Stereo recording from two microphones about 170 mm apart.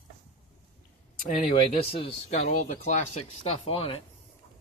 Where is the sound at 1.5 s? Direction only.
35° left (ahead or behind).